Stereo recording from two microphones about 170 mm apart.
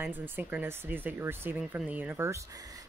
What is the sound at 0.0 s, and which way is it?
Speech, 10° right (ahead or behind).